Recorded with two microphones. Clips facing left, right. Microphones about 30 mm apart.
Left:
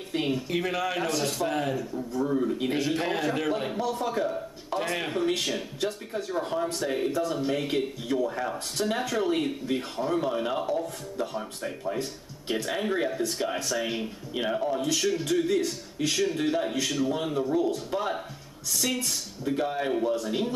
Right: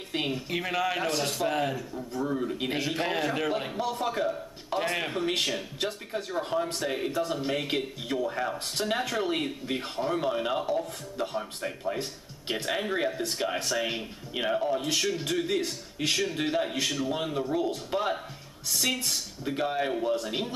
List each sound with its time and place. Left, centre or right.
0.3 s speech: centre
5.2 s speech: centre
14.8 s speech: centre